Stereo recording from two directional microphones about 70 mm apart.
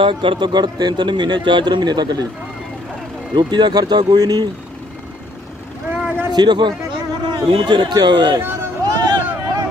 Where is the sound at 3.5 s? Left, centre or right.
Right.